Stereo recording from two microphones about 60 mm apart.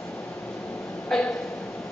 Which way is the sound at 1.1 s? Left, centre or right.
Centre.